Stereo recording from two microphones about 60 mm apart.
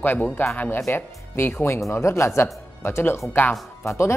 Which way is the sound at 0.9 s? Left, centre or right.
Left.